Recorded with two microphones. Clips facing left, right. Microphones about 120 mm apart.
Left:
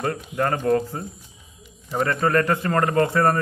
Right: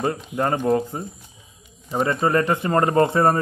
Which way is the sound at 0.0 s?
20° right (ahead or behind).